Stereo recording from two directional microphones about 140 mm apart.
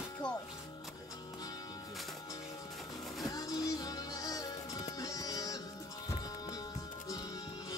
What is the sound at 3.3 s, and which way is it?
Music, 25° left (ahead or behind).